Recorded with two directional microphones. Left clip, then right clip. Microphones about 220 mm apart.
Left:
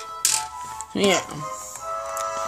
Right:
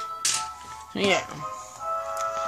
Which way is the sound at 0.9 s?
15° left (ahead or behind).